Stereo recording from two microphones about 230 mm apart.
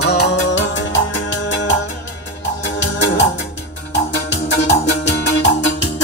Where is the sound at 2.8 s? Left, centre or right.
Left.